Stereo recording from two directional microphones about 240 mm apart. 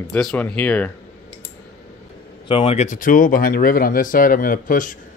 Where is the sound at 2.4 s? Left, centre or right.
Left.